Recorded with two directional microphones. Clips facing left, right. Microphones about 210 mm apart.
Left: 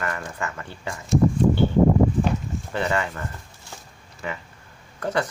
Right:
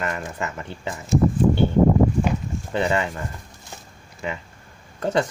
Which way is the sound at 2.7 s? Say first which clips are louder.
Right 3 dB; 20° right (ahead or behind).